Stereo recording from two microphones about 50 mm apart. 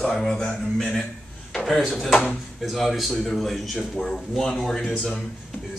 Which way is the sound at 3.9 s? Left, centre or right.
Centre.